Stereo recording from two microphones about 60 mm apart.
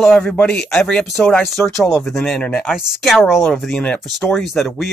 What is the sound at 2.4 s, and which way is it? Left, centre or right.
Speech, left.